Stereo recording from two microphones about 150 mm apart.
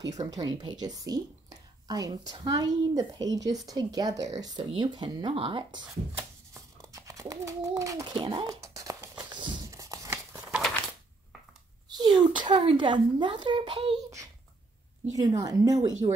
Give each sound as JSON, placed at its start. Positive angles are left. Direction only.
{"t": 0.2, "sound": "speech", "side_deg": -25}
{"t": 6.8, "sound": "a child's voice", "side_deg": -20}
{"t": 8.5, "sound": "a sound", "side_deg": -20}
{"t": 9.2, "sound": "crumpling", "side_deg": -30}
{"t": 11.9, "sound": "speech", "side_deg": -30}
{"t": 15.1, "sound": "speech", "side_deg": -25}